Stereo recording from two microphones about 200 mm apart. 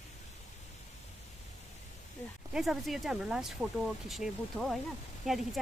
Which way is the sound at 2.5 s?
Centre (ahead or behind).